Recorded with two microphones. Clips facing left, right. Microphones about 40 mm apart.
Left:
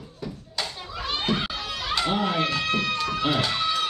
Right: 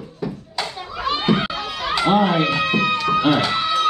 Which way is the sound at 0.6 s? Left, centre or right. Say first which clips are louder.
Right 7 dB; right.